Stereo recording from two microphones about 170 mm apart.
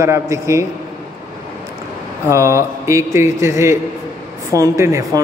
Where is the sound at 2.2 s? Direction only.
15° right (ahead or behind).